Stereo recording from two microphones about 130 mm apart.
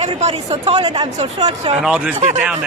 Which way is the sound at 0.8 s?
40° right (ahead or behind).